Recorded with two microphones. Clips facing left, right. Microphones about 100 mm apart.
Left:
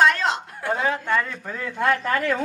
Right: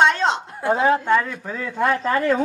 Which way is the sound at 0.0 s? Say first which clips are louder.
Right 2 dB; 30° right (ahead or behind).